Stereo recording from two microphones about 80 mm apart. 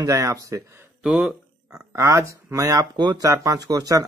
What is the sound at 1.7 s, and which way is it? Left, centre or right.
Speech, right.